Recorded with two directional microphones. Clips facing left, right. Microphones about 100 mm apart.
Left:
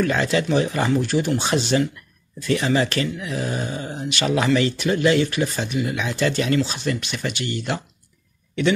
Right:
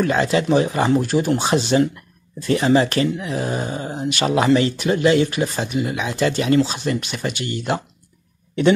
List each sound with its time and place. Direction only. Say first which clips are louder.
0.0 s speech: right 2 dB; 20° right (ahead or behind)